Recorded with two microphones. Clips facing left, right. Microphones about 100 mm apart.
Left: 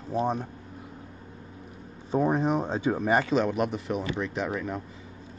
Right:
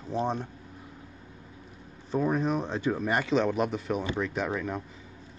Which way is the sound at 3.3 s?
5° left (ahead or behind).